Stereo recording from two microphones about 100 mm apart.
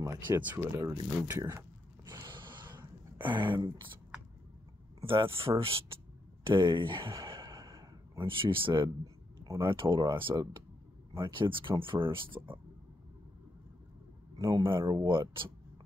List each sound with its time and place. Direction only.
0.4 s speech: 15° right (ahead or behind)
0.7 s speech: 35° right (ahead or behind)
2.0 s a sound: 45° right (ahead or behind)
3.3 s speech: 55° right (ahead or behind)
5.0 s speech: 60° right (ahead or behind)
6.4 s gasp: 55° right (ahead or behind)
8.3 s speech: 60° right (ahead or behind)
10.3 s speech: 40° right (ahead or behind)
11.1 s speech: 55° right (ahead or behind)
14.5 s speech: 55° right (ahead or behind)